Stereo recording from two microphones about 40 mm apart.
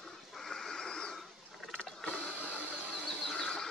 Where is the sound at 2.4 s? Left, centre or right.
Left.